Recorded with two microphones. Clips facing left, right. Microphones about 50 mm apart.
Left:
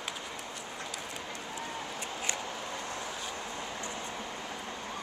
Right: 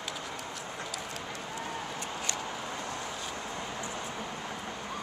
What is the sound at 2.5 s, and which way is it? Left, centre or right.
Vehicle, centre.